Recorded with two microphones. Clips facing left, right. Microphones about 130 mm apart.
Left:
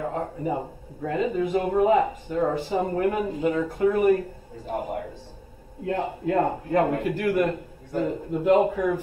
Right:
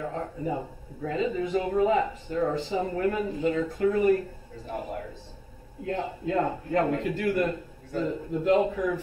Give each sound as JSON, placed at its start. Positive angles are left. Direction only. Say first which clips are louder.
{"t": 0.0, "sound": "a man's voice", "louder": "left 3 dB", "side_deg": 55}